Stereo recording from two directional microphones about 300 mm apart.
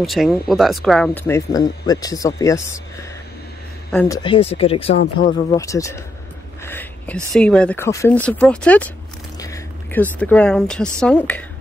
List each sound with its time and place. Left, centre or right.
0.0 s speech: centre
4.2 s speech: centre
6.6 s a sound: centre
7.3 s speech: centre